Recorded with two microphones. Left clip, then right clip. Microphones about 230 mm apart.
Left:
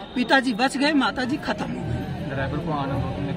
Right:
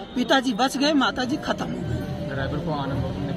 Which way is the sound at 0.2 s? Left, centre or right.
Centre.